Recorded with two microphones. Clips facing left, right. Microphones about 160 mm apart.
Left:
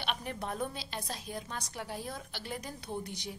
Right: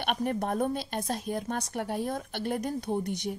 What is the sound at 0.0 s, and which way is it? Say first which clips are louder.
A woman's voice: right 8 dB; 50° right (ahead or behind).